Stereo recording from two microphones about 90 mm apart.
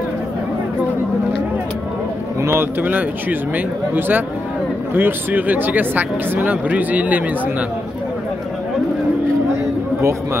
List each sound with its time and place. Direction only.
2.4 s speech: 25° right (ahead or behind)